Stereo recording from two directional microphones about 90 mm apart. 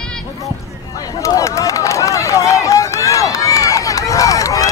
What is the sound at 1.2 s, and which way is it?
Run, 35° left (ahead or behind).